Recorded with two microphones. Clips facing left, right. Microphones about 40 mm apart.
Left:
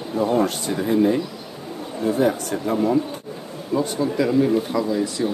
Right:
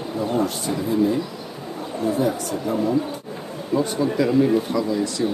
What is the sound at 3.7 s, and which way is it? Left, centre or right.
Speech, centre.